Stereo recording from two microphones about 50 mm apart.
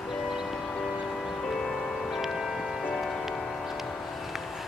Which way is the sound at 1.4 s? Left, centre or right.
Centre.